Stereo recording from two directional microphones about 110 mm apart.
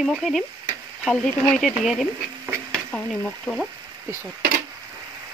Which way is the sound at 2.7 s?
10° left (ahead or behind).